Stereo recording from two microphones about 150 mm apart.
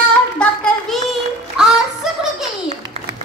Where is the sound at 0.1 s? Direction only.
5° left (ahead or behind).